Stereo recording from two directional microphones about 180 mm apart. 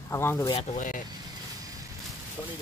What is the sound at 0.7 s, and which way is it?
Speech, 45° left (ahead or behind).